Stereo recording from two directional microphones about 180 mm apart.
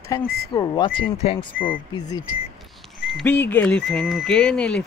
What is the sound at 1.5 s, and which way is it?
Speech, 50° left (ahead or behind).